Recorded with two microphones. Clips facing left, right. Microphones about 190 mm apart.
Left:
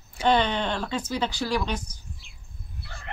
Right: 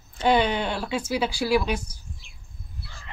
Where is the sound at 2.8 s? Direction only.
65° left (ahead or behind).